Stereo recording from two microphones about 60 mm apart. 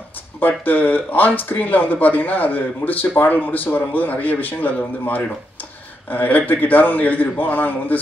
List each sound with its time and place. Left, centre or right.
0.4 s a man's voice: left